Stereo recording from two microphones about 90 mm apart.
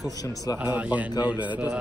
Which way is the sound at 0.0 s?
45° left (ahead or behind).